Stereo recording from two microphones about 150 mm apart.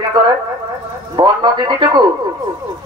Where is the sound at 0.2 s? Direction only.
30° right (ahead or behind).